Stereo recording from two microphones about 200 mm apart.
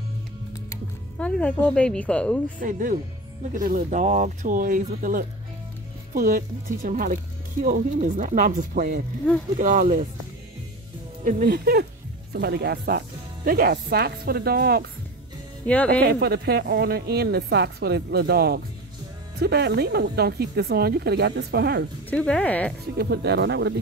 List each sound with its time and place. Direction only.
1.2 s speech: 5° left (ahead or behind)
2.6 s a woman's voice: 40° right (ahead or behind)
11.2 s a woman's voice: 45° right (ahead or behind)
15.6 s speech: 5° left (ahead or behind)
16.0 s a woman's voice: 55° right (ahead or behind)
22.1 s speech: 5° left (ahead or behind)
22.9 s speech: 55° right (ahead or behind)